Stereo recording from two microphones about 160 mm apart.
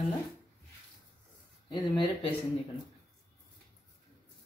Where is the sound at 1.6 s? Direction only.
30° left (ahead or behind).